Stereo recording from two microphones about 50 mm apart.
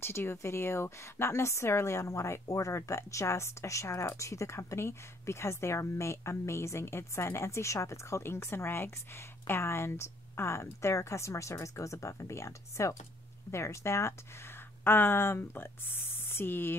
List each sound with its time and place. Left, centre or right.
0.0 s speech: left
8.2 s speech: left
14.9 s speech: left